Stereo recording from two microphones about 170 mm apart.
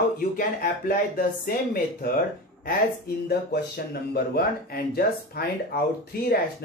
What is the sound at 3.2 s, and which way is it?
Speech, 70° left (ahead or behind).